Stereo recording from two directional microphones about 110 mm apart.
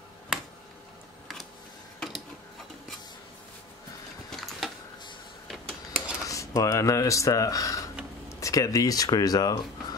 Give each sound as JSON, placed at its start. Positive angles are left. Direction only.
{"t": 2.0, "sound": "mechanisms", "side_deg": 0}
{"t": 4.3, "sound": "a sound", "side_deg": 0}
{"t": 6.2, "sound": "speech", "side_deg": 30}